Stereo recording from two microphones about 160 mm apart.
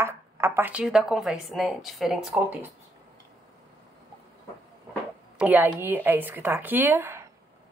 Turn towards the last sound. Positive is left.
turn(degrees=-15)  # may be behind; listen again after turning